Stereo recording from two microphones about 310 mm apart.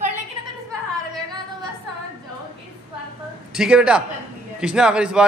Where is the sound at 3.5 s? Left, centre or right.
Centre.